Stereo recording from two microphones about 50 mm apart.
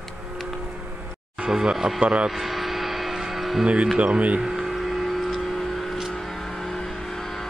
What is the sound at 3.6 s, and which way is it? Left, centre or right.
Speech, right.